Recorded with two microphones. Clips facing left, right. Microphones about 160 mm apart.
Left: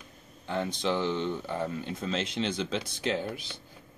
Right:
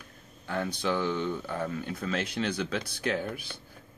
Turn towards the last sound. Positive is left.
turn(degrees=20)  # may be behind; listen again after turning